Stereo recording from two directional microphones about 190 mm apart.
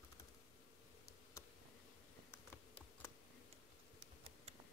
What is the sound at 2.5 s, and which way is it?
Computer keyboard, 10° left (ahead or behind).